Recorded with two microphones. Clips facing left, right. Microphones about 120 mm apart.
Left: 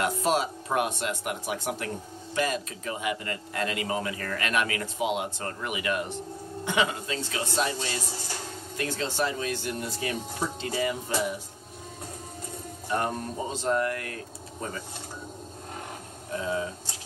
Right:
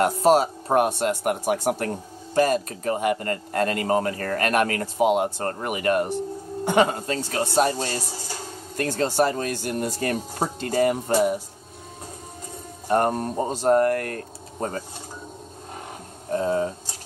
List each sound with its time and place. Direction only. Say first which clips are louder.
0.0 s a man's voice: right 8 dB; 40° right (ahead or behind)
12.8 s a man's voice: right 8 dB; 50° right (ahead or behind)
16.3 s a man's voice: right 7 dB; 45° right (ahead or behind)